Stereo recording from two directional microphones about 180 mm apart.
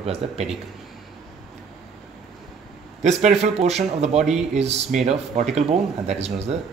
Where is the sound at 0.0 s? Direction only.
35° right (ahead or behind).